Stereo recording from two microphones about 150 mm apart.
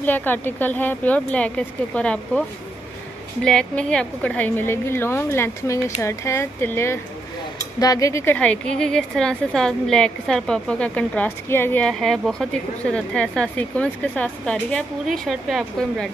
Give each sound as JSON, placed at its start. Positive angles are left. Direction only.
{"t": 0.0, "sound": "a woman's voice", "side_deg": 10}
{"t": 3.4, "sound": "a woman's voice", "side_deg": 5}
{"t": 11.9, "sound": "a woman's voice", "side_deg": 0}